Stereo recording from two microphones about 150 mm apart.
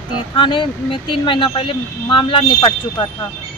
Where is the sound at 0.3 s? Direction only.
35° left (ahead or behind).